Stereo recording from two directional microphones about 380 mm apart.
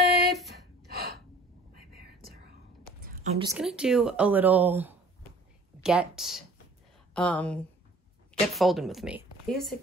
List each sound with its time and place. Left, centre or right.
0.0 s a sound: right
0.8 s gasp: right
3.3 s speech: centre